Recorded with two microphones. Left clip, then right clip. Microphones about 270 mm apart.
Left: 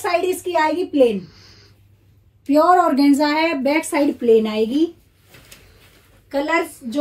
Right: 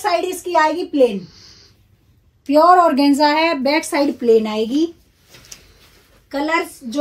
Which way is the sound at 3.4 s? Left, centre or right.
Centre.